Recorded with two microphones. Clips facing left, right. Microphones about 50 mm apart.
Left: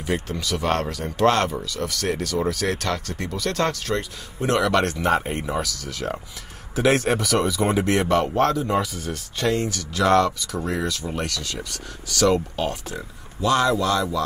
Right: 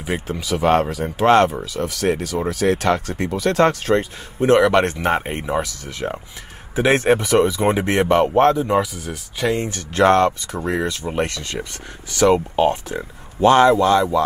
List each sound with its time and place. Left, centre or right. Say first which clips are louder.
0.0 s speech: right 1 dB; centre
8.9 s speech: even; centre
9.6 s speech: right 6 dB; right